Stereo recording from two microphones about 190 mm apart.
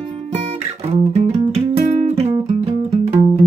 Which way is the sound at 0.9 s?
35° right (ahead or behind).